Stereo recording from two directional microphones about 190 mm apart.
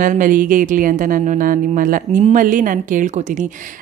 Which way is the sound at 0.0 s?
45° right (ahead or behind).